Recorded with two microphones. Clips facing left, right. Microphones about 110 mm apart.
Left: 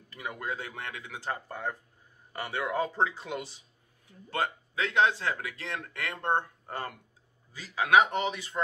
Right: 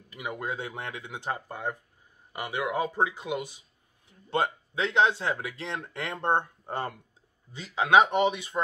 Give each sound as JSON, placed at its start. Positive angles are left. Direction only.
{"t": 0.1, "sound": "speech", "side_deg": -15}